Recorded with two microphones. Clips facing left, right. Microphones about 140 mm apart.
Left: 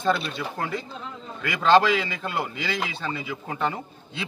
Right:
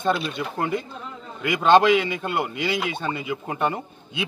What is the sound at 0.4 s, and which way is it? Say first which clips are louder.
Speech: right 4 dB; centre (ahead or behind).